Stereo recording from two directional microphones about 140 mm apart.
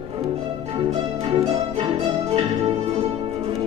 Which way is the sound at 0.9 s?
40° right (ahead or behind).